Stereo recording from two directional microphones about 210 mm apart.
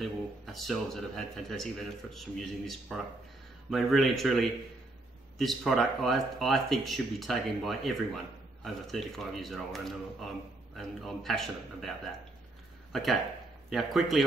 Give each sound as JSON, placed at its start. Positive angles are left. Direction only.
{"t": 0.0, "sound": "speech", "side_deg": 0}
{"t": 12.9, "sound": "speech", "side_deg": 0}